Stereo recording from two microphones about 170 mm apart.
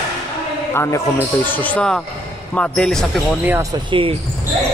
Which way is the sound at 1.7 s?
5° left (ahead or behind).